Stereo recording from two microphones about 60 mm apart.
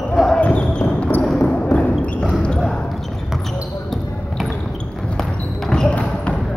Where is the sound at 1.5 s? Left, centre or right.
Left.